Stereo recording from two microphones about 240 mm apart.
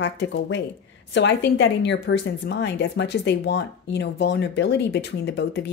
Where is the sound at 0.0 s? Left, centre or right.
Left.